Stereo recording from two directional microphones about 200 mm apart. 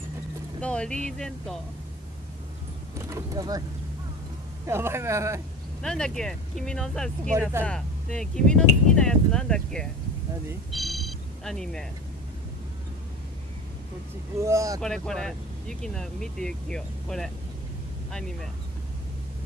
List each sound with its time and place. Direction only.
0.6 s speech: 5° left (ahead or behind)
3.0 s speech: 15° right (ahead or behind)
4.6 s speech: 10° right (ahead or behind)
5.8 s speech: 5° left (ahead or behind)
10.7 s music: centre (ahead or behind)
14.4 s speech: 15° right (ahead or behind)
14.8 s speech: 5° left (ahead or behind)